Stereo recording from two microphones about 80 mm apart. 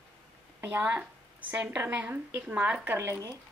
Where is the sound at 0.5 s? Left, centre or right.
Right.